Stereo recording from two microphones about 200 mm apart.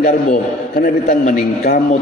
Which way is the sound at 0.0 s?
45° left (ahead or behind).